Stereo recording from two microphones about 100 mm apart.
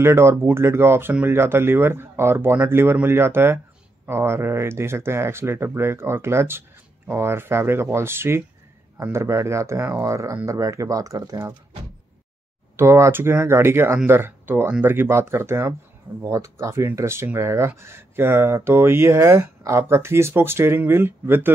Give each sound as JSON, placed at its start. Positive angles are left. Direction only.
{"t": 0.0, "sound": "speech", "side_deg": -25}
{"t": 12.7, "sound": "speech", "side_deg": -25}